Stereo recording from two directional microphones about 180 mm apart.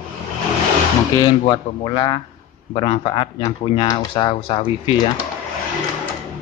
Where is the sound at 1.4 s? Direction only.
25° left (ahead or behind).